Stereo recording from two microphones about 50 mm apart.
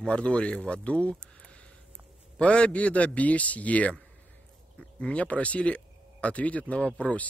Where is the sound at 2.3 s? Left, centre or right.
Left.